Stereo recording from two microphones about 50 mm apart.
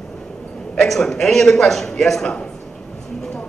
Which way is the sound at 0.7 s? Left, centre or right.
Centre.